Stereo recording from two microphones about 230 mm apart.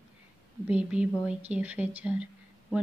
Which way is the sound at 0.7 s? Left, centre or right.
Centre.